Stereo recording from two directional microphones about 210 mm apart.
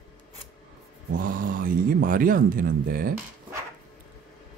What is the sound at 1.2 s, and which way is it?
Speech, 40° right (ahead or behind).